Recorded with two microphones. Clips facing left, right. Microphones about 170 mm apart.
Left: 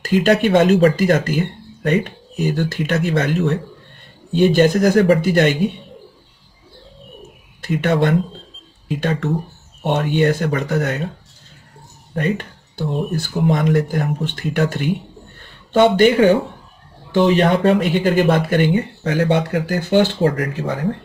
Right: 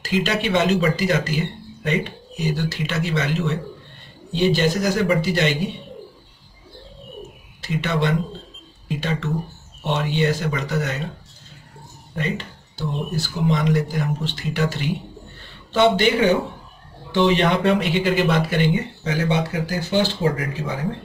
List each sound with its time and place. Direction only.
0.0 s speech: 50° left (ahead or behind)
7.6 s speech: 50° left (ahead or behind)
12.2 s speech: 55° left (ahead or behind)